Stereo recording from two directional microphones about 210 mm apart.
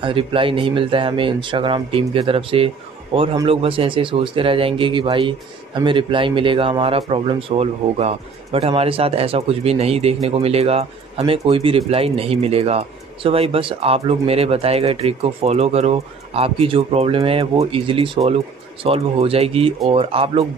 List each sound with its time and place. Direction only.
0.0 s speech: 25° right (ahead or behind)